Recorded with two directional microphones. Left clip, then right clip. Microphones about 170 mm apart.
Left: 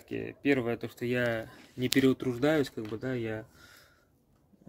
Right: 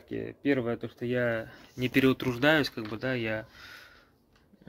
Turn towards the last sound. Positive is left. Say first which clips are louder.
# right 5 dB
turn(degrees=10)  # may be behind; listen again after turning